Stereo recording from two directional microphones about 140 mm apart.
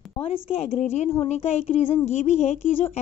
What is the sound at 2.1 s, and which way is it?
Speech, 55° left (ahead or behind).